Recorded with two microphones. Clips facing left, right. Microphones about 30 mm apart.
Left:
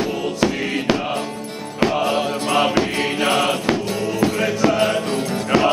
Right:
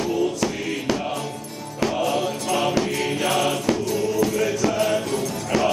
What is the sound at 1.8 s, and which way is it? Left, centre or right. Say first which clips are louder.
Mantra: left 4 dB; left.